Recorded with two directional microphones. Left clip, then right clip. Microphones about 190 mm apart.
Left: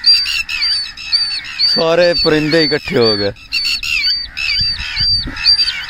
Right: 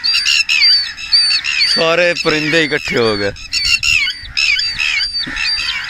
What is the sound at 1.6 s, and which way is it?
Speech, 30° left (ahead or behind).